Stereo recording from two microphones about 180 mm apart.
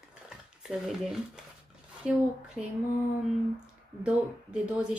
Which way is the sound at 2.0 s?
5° right (ahead or behind).